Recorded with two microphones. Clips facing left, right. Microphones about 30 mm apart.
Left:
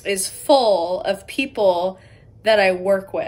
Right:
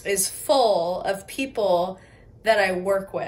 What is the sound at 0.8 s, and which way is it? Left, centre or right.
A woman's voice, left.